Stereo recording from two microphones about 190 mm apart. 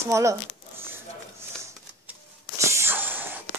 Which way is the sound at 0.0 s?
15° right (ahead or behind).